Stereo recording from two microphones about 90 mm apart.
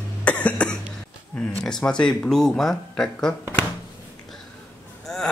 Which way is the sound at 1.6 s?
5° left (ahead or behind).